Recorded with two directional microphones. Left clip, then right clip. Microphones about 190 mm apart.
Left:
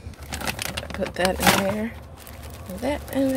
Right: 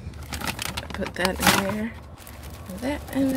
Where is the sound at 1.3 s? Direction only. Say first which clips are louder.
Even; 10° left (ahead or behind).